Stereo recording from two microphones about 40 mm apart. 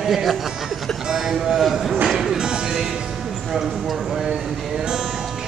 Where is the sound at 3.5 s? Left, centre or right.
Centre.